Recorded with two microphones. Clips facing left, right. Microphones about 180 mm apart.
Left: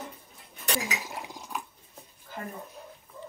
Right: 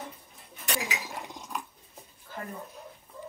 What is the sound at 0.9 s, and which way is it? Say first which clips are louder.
Dishes: left 1 dB; centre (ahead or behind).